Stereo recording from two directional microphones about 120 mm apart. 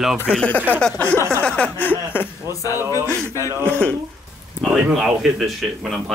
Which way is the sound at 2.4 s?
35° left (ahead or behind).